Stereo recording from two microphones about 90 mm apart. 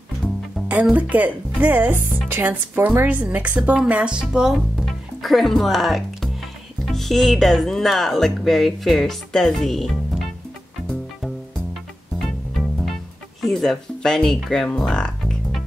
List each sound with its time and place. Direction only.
0.6 s music: 5° left (ahead or behind)
0.9 s a woman's voice: 15° right (ahead or behind); by 10.3 s centre (ahead or behind)
12.2 s music: centre (ahead or behind)
13.4 s speech: centre (ahead or behind)
14.8 s music: 5° left (ahead or behind)